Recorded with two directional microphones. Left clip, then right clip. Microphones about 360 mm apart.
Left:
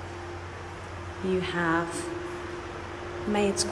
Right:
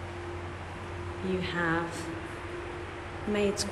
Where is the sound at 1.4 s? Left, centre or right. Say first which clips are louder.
Left 3 dB; centre.